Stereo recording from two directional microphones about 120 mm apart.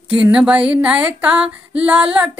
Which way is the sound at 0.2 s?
5° right (ahead or behind).